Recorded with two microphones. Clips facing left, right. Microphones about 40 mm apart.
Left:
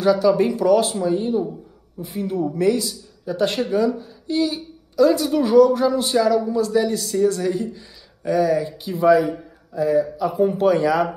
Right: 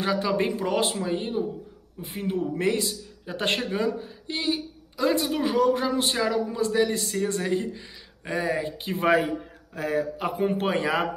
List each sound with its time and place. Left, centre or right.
0.0 s a man's voice: right